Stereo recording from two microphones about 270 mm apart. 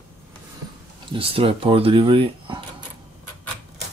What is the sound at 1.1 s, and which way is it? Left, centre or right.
Speech, centre.